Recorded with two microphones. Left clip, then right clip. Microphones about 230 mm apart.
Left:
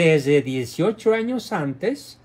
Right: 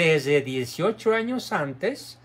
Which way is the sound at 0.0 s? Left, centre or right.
Centre.